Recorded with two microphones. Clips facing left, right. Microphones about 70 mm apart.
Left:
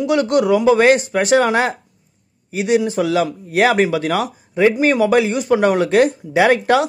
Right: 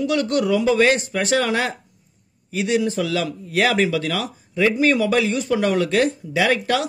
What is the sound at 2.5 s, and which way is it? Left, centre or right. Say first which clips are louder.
A man's voice: left 4 dB; centre.